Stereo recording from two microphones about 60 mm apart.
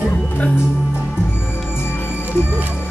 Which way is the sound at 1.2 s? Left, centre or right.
Left.